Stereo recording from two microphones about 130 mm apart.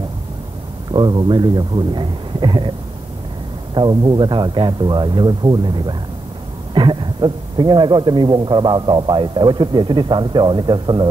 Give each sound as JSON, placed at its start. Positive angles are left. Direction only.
{"t": 0.9, "sound": "a man's voice", "side_deg": -35}
{"t": 3.7, "sound": "a man's voice", "side_deg": -35}